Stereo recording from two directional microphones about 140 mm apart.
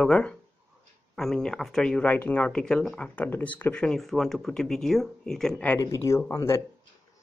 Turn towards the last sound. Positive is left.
turn(degrees=20)  # may be behind; listen again after turning